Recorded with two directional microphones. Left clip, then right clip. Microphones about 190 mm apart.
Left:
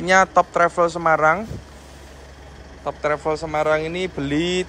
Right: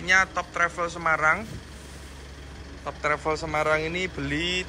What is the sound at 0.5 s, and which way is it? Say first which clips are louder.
Speech: left 8 dB; 20° left (ahead or behind).